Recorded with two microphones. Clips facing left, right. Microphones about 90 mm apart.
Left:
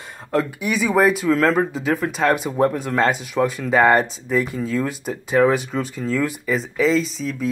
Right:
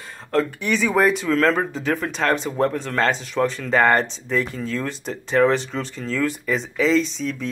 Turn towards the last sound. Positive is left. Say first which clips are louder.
# even
turn(degrees=5)  # may be behind; listen again after turning